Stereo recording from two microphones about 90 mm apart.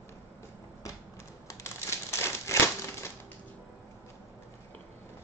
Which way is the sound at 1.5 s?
30° left (ahead or behind).